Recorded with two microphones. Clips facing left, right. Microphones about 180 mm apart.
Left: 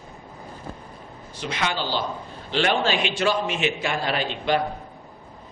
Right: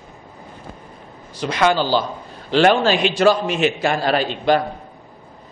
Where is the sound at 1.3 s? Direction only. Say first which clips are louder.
Right 10 dB; 40° right (ahead or behind).